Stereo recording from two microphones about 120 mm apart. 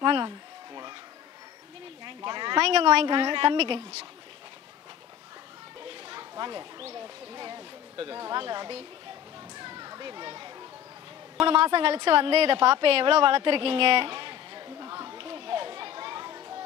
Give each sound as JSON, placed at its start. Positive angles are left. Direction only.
{"t": 0.0, "sound": "a sound", "side_deg": -40}
{"t": 2.0, "sound": "speech", "side_deg": -40}
{"t": 2.6, "sound": "a woman's voice", "side_deg": -55}
{"t": 6.0, "sound": "a sound", "side_deg": -40}
{"t": 7.0, "sound": "speech", "side_deg": -40}
{"t": 9.6, "sound": "children playing", "side_deg": -35}
{"t": 11.4, "sound": "a woman's voice", "side_deg": -50}
{"t": 15.1, "sound": "children playing", "side_deg": -45}